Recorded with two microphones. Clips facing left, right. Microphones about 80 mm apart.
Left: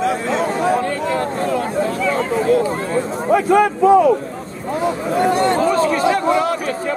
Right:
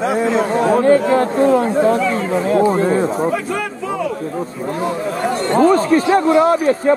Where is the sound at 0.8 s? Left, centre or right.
Right.